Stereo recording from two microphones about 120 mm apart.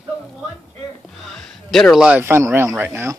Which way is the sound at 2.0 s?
15° right (ahead or behind).